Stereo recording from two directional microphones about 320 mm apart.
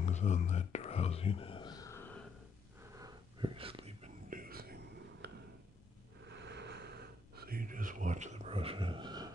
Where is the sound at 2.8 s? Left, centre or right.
Centre; by 5.3 s right.